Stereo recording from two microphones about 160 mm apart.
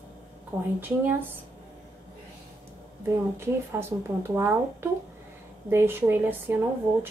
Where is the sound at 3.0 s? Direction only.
15° right (ahead or behind).